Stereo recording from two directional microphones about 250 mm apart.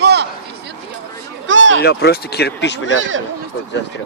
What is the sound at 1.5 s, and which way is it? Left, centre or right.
Speech, right.